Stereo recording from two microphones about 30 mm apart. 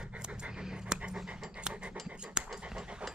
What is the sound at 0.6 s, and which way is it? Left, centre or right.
Pant, right.